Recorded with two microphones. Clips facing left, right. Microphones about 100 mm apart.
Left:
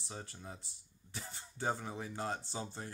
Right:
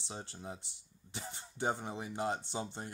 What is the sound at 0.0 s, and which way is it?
Speech, 25° right (ahead or behind).